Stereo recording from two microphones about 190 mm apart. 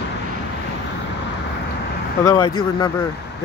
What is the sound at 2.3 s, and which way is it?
Speech, 20° left (ahead or behind).